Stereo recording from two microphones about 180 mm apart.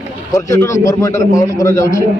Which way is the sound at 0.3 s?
15° left (ahead or behind).